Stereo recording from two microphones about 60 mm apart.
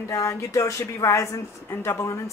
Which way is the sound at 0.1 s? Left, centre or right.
Left.